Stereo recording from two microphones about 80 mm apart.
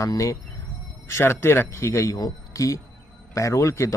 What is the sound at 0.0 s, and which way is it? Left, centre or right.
Speech, left.